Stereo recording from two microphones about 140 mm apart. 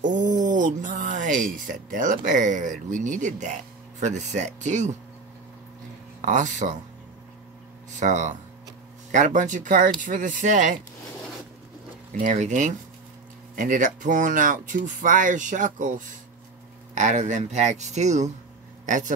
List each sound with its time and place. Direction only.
0.0 s a sound: 65° right (ahead or behind)
0.5 s speech: 70° right (ahead or behind)
6.2 s speech: 65° right (ahead or behind)
8.0 s speech: 60° right (ahead or behind)
12.2 s speech: 60° right (ahead or behind)
16.9 s speech: 60° right (ahead or behind)